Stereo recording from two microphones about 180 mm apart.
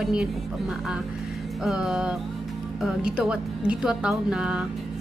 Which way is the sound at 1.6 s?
Centre (ahead or behind).